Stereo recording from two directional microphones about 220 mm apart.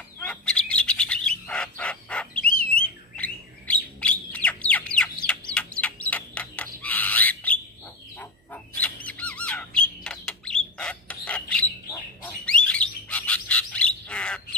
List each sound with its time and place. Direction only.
0.2 s bird: 5° left (ahead or behind)